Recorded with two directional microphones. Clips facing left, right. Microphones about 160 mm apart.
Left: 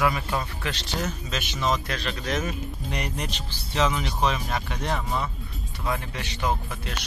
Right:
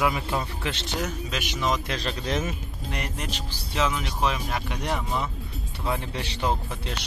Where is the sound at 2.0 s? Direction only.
30° right (ahead or behind).